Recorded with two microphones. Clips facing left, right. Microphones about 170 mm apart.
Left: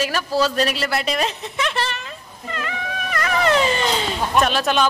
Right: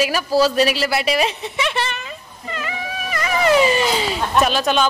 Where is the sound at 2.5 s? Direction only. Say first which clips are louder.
Right 1 dB; 5° right (ahead or behind).